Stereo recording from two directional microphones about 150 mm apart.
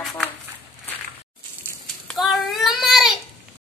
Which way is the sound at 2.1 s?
Centre (ahead or behind).